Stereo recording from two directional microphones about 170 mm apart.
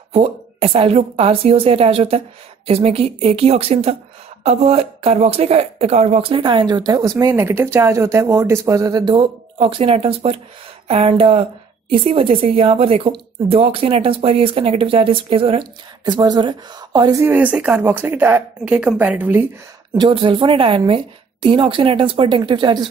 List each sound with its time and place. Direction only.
0.1 s a woman's voice: 35° right (ahead or behind)
17.3 s a woman's voice: 10° right (ahead or behind)
20.0 s speech: 30° right (ahead or behind)